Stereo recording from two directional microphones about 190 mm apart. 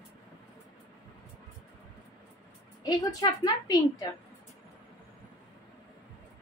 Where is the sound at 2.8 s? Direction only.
20° left (ahead or behind).